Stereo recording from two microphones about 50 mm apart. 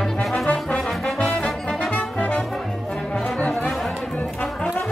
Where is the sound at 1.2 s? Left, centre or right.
Centre.